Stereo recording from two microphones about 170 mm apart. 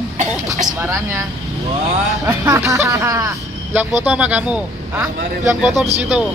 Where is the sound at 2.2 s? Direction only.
15° right (ahead or behind).